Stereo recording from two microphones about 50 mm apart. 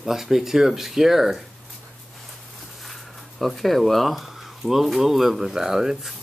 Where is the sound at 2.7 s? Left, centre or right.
Centre.